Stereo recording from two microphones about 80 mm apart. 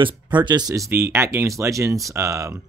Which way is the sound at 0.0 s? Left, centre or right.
Right.